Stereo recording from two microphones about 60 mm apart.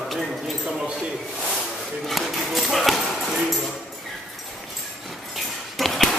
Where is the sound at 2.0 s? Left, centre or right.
Centre.